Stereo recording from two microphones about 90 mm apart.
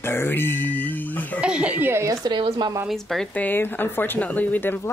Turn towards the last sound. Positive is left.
turn(degrees=20)  # may be behind; listen again after turning